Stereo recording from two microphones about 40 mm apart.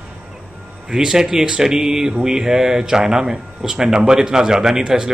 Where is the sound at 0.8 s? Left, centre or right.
Centre.